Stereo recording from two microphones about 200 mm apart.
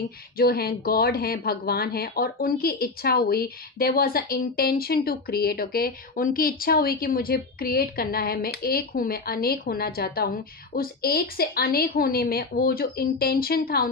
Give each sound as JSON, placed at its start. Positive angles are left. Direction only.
{"t": 0.4, "sound": "speech", "side_deg": 50}